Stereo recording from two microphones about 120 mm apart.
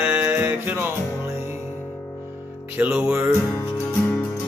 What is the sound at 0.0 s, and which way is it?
Music, 15° right (ahead or behind).